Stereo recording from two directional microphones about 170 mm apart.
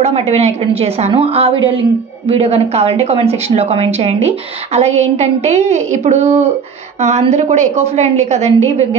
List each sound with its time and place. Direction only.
0.0 s speech: 35° right (ahead or behind)